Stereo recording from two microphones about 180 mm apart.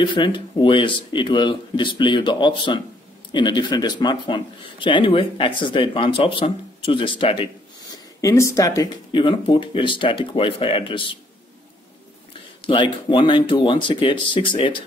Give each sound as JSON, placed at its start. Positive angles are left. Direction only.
{"t": 0.0, "sound": "speech", "side_deg": 25}
{"t": 8.2, "sound": "speech", "side_deg": 15}
{"t": 12.6, "sound": "speech", "side_deg": 25}